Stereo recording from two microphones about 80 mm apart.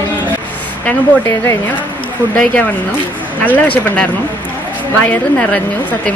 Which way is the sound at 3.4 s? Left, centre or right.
Left.